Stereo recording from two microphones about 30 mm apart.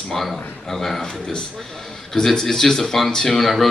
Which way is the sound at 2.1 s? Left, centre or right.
Centre.